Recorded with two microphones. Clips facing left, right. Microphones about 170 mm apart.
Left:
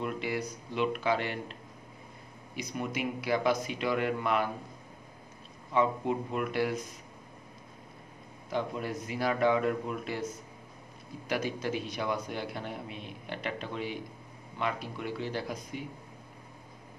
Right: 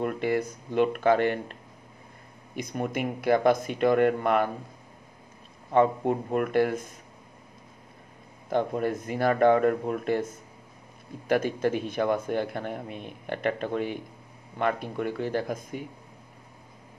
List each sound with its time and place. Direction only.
0.0 s speech: 50° right (ahead or behind)
5.7 s speech: 50° right (ahead or behind)
8.5 s speech: 50° right (ahead or behind)
11.2 s speech: 50° right (ahead or behind)